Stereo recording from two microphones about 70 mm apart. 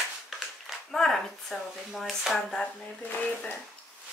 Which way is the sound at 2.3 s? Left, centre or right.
Centre.